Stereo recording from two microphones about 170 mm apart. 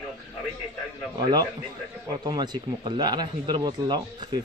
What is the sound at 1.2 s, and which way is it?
Speech, 25° right (ahead or behind).